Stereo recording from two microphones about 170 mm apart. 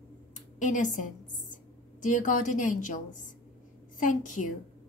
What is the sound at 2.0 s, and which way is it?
A woman's voice, 50° left (ahead or behind).